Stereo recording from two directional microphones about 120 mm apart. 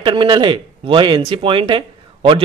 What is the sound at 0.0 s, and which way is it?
Speech, 45° right (ahead or behind).